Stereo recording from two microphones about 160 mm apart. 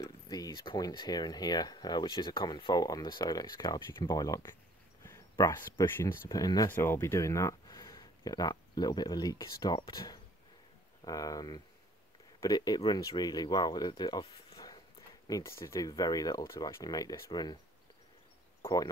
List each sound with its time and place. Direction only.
0.0 s speech: 25° left (ahead or behind)